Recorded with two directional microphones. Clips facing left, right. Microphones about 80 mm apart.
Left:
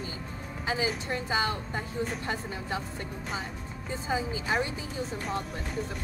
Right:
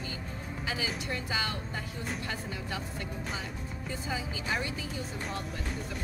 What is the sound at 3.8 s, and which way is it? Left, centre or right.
Speech, left.